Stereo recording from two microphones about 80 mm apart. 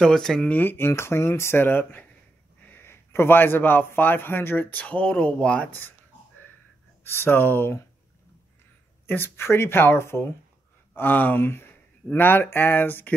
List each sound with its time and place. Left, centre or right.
0.0 s speech: centre
0.5 s speech: left
5.7 s speech: left
7.1 s speech: left
9.0 s speech: left